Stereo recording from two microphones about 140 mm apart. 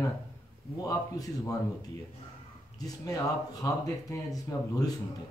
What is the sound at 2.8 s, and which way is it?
Speech, 25° left (ahead or behind).